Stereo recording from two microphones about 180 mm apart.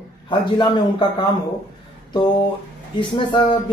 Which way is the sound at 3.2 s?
25° left (ahead or behind).